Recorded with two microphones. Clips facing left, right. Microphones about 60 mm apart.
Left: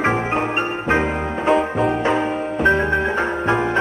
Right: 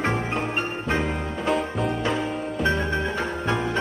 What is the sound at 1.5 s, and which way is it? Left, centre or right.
Music, centre.